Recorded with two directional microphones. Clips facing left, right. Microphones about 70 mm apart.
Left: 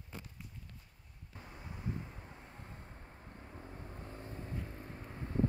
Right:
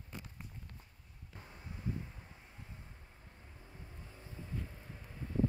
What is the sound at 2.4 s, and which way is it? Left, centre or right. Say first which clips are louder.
Vehicle: left 3 dB; left.